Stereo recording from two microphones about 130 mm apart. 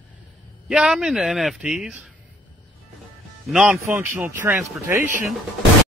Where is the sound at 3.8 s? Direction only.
20° right (ahead or behind).